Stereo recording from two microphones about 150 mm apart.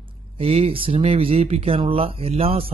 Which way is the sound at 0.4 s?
40° right (ahead or behind).